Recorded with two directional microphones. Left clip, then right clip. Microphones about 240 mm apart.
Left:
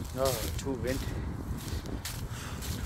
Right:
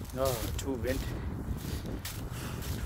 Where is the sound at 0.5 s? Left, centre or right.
Centre.